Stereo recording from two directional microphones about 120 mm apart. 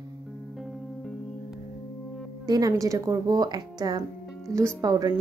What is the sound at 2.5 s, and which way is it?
Speech, 30° right (ahead or behind).